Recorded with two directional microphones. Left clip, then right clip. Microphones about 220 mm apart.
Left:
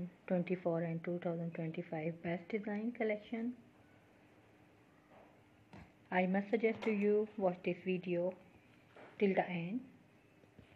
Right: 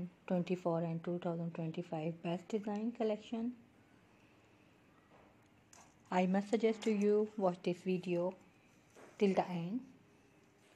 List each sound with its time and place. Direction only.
0.2 s speech: 20° right (ahead or behind)
6.0 s speech: 30° right (ahead or behind)